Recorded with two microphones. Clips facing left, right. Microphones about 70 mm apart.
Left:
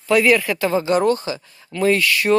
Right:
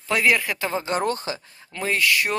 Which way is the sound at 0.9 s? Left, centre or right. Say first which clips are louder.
Left 6 dB; right.